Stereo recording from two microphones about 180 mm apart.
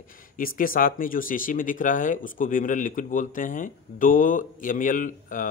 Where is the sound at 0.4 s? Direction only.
50° left (ahead or behind).